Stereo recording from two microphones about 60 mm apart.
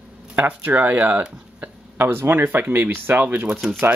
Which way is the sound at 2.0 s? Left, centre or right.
Right.